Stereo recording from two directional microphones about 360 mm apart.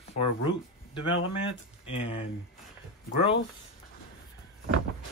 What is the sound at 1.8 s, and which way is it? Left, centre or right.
Speech, centre.